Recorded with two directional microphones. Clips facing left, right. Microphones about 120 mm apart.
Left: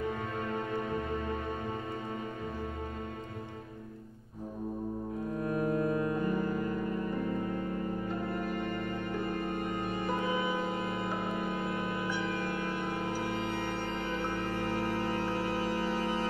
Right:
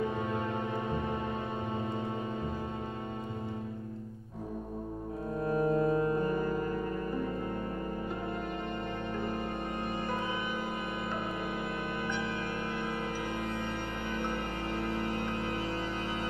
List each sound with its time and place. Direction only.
5.4 s music: 30° right (ahead or behind)